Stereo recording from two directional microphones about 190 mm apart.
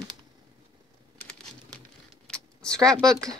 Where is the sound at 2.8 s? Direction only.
20° right (ahead or behind).